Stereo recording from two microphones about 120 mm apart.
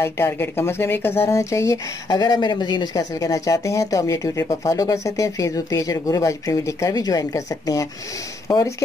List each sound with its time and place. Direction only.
0.0 s speech: 20° left (ahead or behind)
2.0 s speech: 35° left (ahead or behind)